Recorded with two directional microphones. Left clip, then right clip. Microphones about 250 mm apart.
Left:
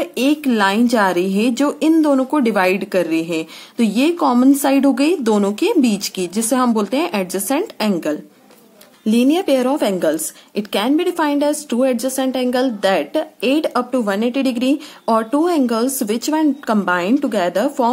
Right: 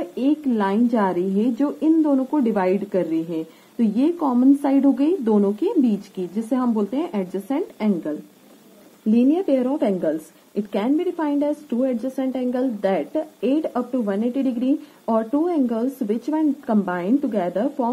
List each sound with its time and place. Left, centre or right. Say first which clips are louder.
0.1 s a woman's voice: left 5 dB; centre
4.2 s speech: left 6 dB; left
4.6 s a woman's voice: left 4 dB; centre